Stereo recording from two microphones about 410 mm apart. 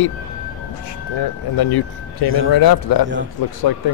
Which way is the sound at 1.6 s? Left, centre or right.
Left.